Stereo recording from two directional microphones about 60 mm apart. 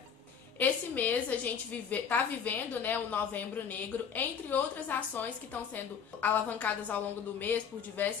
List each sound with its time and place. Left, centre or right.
0.6 s a woman's voice: left